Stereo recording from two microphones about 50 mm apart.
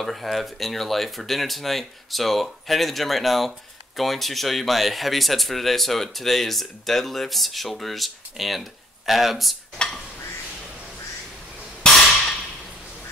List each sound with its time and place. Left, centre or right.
0.0 s speech: centre
9.8 s stir: centre